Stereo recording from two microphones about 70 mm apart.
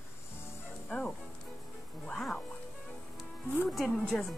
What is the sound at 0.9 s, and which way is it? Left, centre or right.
Speech, centre.